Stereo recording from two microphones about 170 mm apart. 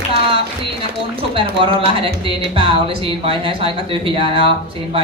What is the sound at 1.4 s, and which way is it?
Speech, 30° right (ahead or behind).